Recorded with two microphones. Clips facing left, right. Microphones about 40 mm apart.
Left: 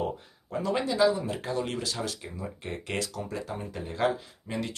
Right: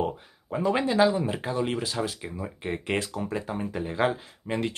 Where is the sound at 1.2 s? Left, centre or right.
Right.